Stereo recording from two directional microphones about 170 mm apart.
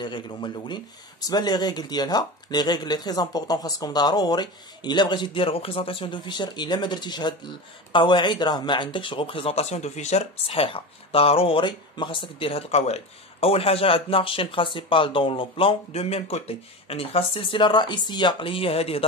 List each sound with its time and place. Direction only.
0.0 s speech: 25° left (ahead or behind)